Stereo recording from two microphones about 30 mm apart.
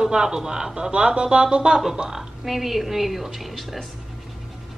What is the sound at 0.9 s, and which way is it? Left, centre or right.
Speech, right.